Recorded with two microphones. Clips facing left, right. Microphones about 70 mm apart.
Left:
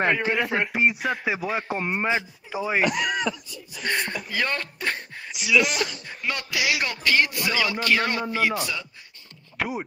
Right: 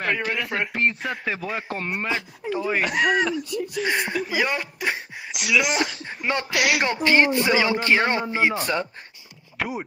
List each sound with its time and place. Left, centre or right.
0.2 s a man's voice: centre
3.4 s speech: right
3.8 s speech: centre
5.3 s speech: right
5.7 s speech: right
6.5 s speech: right
6.8 s a man's voice: right
8.5 s speech: right
9.6 s speech: centre